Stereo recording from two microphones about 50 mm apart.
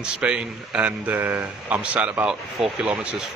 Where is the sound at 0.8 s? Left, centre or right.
Right.